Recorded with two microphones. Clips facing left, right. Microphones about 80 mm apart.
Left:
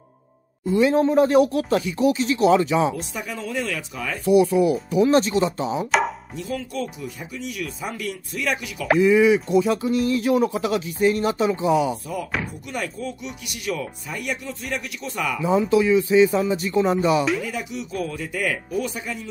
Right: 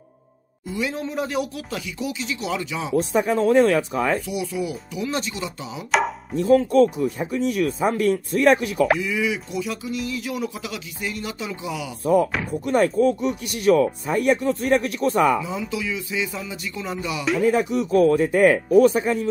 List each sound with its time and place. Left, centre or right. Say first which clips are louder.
0.7 s speech: left 9 dB; left
3.0 s speech: right 11 dB; right
4.3 s speech: left 10 dB; left
5.9 s chopping: right 3 dB; centre
6.3 s speech: right 13 dB; right
9.0 s speech: left 9 dB; left
12.6 s speech: right 11 dB; right
15.4 s speech: left 9 dB; left
17.2 s a sound: right 1 dB; centre
17.5 s speech: right 10 dB; right